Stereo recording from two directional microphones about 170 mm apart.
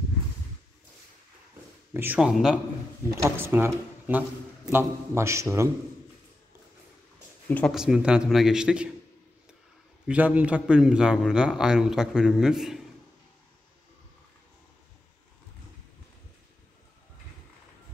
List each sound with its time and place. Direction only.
2.0 s a man's voice: 10° right (ahead or behind)
7.4 s speech: 10° left (ahead or behind)
7.7 s a man's voice: 5° right (ahead or behind)
10.0 s a man's voice: 10° right (ahead or behind)